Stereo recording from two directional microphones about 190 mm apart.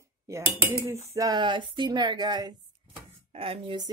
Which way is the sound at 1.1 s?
20° right (ahead or behind).